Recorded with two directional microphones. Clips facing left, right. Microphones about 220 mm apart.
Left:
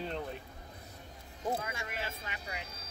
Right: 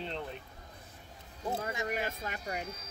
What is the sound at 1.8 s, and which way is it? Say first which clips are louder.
Speech: right 6 dB; 45° right (ahead or behind).